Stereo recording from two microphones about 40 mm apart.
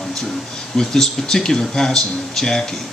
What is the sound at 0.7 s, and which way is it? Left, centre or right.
Speech, centre.